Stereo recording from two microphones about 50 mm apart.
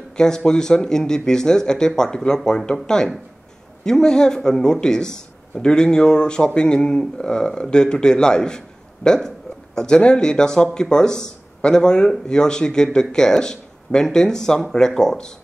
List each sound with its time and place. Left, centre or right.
0.2 s speech: centre